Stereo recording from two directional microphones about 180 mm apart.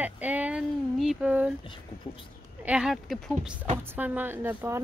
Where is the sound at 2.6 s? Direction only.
5° right (ahead or behind).